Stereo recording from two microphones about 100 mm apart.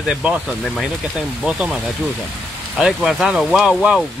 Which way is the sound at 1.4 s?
10° right (ahead or behind).